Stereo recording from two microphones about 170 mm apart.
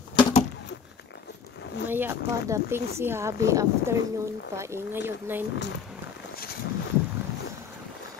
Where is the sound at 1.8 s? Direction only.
10° right (ahead or behind).